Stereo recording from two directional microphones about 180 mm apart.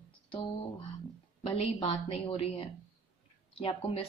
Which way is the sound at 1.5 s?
30° left (ahead or behind).